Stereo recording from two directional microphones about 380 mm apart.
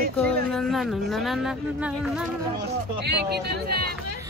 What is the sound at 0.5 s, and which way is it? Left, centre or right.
Speech, centre.